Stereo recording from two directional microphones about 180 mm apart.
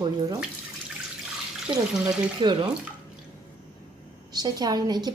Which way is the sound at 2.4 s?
25° right (ahead or behind).